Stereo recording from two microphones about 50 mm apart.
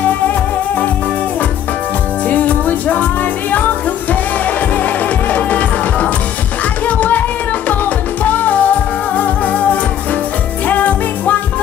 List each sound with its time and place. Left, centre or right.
2.2 s music: left